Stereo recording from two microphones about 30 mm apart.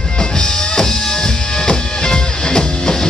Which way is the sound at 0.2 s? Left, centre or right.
Left.